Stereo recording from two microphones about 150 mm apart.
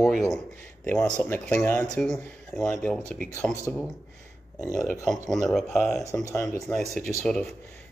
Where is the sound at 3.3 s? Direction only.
20° left (ahead or behind).